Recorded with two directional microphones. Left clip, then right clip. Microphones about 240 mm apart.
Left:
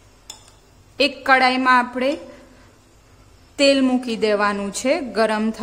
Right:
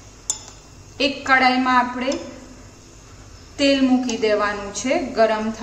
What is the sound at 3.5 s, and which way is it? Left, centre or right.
A woman's voice, left.